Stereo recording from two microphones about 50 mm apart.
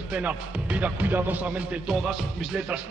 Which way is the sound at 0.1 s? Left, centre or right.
Right.